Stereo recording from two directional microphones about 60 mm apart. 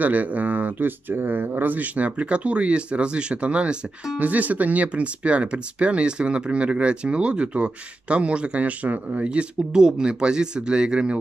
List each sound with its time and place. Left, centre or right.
0.0 s speech: right